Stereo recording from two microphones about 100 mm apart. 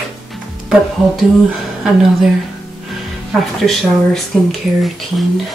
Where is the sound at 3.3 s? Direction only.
Centre (ahead or behind).